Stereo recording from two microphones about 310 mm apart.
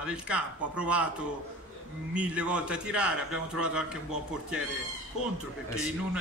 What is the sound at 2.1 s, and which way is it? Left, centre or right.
A man's voice, centre.